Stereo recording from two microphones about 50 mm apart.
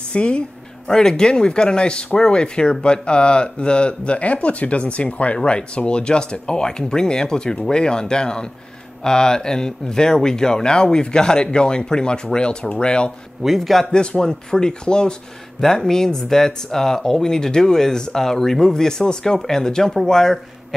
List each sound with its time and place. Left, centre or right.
0.1 s a woman's voice: left
0.8 s speech: centre
13.4 s a man's voice: centre
13.9 s speech: centre